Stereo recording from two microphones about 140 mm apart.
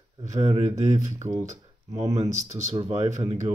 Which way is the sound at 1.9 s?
55° right (ahead or behind).